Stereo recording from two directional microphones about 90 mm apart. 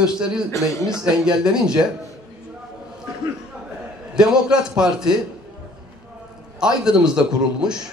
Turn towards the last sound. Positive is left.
turn(degrees=-5)  # may be behind; listen again after turning